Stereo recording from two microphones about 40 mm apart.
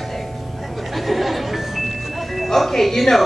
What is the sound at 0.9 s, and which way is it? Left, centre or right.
Chuckle, centre.